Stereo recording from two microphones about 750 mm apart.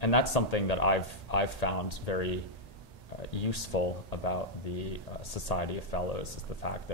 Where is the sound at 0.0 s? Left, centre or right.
Left.